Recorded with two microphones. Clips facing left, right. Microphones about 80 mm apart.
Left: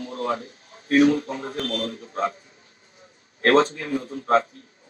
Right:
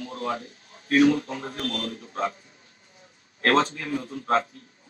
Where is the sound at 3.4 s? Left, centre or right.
Left.